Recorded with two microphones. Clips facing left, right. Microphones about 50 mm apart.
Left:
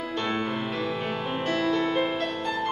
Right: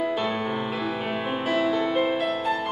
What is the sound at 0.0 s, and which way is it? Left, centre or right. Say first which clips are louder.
Music: right 3 dB; centre.